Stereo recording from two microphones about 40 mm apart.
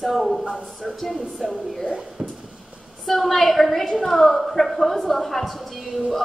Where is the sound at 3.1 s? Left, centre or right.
Centre.